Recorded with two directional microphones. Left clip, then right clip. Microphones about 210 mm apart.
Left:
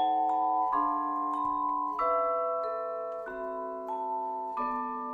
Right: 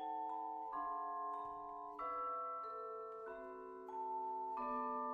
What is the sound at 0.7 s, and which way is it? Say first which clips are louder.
Music: left 15 dB; 30° left (ahead or behind).